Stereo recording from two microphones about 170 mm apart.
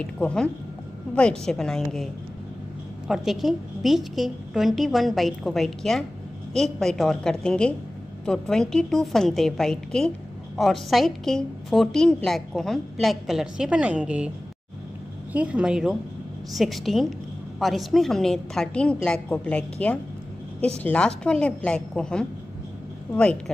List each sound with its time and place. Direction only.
0.0 s a woman's voice: 5° left (ahead or behind)
3.1 s a woman's voice: centre (ahead or behind)
15.3 s a woman's voice: 5° right (ahead or behind)